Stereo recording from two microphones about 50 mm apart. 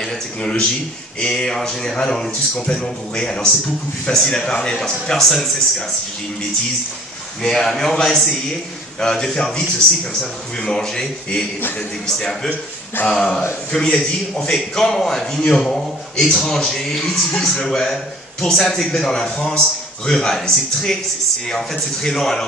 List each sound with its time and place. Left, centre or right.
0.4 s a man's voice: centre
7.4 s a man's voice: centre
13.1 s speech: centre
13.7 s a man's voice: centre
22.0 s a man's voice: centre